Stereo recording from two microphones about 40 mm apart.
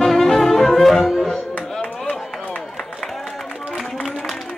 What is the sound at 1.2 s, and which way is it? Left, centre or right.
Music, centre.